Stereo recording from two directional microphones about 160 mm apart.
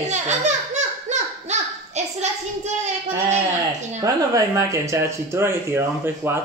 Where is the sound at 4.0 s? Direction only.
20° right (ahead or behind).